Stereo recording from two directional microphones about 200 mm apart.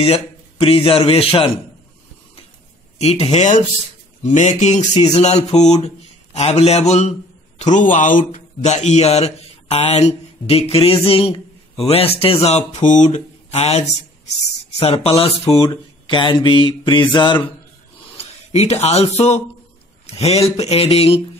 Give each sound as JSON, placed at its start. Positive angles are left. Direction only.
{"t": 0.0, "sound": "mantra", "side_deg": 30}
{"t": 3.0, "sound": "a man's voice", "side_deg": 30}
{"t": 14.8, "sound": "mantra", "side_deg": 30}
{"t": 18.1, "sound": "speech", "side_deg": 30}